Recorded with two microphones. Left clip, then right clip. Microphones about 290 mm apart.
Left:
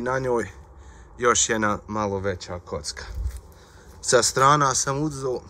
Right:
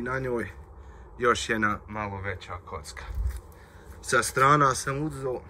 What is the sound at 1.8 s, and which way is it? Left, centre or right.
Speech, centre.